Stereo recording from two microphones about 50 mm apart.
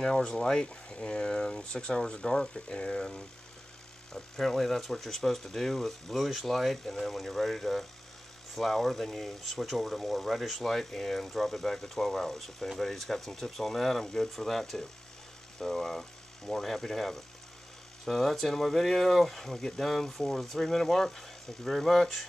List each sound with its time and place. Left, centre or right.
0.0 s speech: centre
4.1 s speech: centre